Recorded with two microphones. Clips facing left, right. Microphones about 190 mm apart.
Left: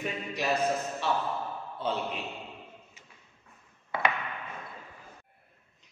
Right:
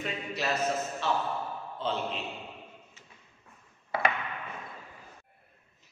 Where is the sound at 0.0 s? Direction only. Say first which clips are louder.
Left 1 dB; 15° left (ahead or behind).